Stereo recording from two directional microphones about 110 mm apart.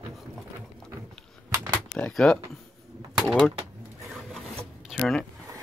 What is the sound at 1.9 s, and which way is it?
Speech, 5° left (ahead or behind).